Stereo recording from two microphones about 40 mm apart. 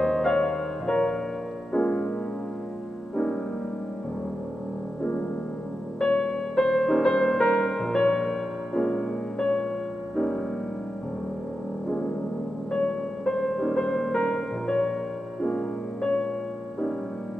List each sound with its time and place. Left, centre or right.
0.0 s music: centre
5.9 s music: centre
12.7 s music: left